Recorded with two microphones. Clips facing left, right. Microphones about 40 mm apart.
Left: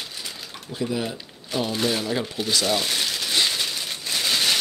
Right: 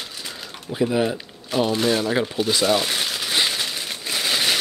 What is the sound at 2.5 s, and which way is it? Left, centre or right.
Crumpling, centre.